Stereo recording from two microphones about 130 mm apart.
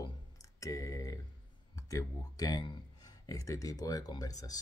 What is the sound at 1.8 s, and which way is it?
Speech, 25° left (ahead or behind).